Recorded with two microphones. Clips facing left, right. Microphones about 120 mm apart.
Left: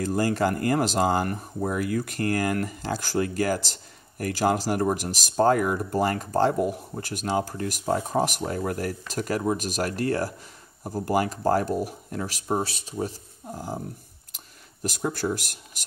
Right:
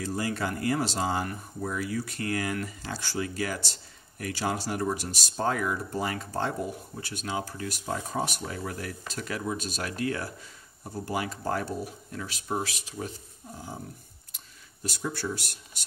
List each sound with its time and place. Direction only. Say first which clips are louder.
0.1 s speech: left 7 dB; 45° left (ahead or behind)
12.4 s speech: left 4 dB; 30° left (ahead or behind)
14.8 s speech: left 5 dB; 55° left (ahead or behind)